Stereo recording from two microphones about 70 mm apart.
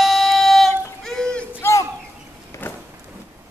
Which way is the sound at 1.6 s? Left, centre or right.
Left.